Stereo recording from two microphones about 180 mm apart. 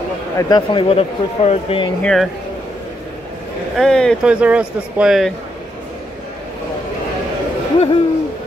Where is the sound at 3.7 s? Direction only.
Centre (ahead or behind).